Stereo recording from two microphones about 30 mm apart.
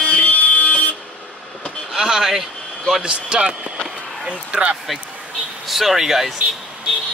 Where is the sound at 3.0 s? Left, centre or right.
Right.